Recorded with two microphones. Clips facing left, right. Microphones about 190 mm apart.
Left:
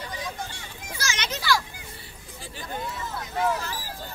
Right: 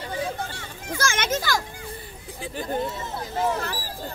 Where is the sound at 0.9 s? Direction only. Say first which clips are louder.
Right 7 dB; 50° right (ahead or behind).